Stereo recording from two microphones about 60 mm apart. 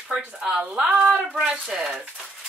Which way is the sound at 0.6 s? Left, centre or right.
Centre.